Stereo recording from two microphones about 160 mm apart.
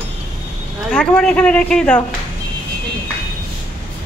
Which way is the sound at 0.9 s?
5° left (ahead or behind).